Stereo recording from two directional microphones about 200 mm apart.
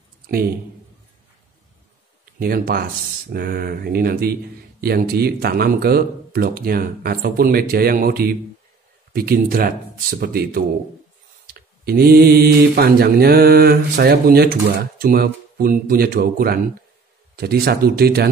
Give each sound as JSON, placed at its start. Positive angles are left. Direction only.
{"t": 2.3, "sound": "speech", "side_deg": -50}